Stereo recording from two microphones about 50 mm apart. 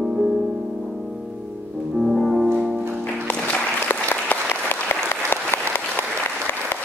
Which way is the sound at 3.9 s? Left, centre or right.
Left.